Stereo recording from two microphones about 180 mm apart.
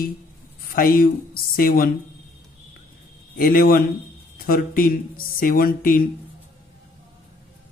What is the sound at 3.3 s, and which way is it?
Speech, 50° left (ahead or behind).